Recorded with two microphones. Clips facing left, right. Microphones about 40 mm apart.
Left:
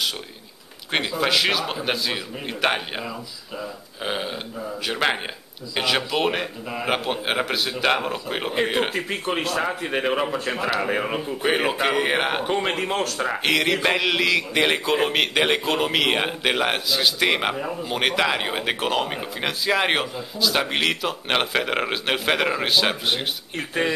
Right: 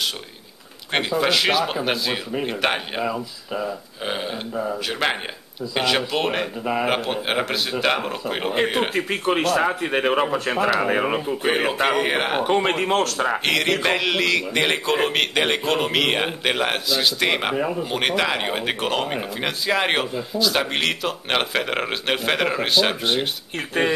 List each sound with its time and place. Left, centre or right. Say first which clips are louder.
0.9 s speech: right 1 dB; centre
6.6 s speech: right 7 dB; right
6.9 s speech: right 1 dB; centre
8.9 s speech: right 4 dB; centre
11.4 s speech: even; centre
12.4 s speech: right 4 dB; centre
13.4 s speech: left 4 dB; centre